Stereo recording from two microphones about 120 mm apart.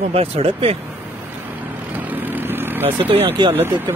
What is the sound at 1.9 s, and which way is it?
Vehicle, 15° right (ahead or behind).